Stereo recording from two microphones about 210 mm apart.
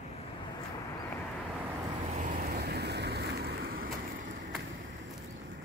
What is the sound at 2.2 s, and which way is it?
Vehicle, 40° right (ahead or behind).